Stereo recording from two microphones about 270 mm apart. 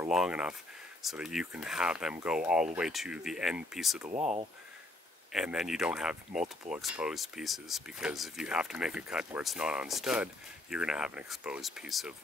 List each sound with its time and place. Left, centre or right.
0.0 s speech: centre
4.1 s speech: right
5.3 s speech: centre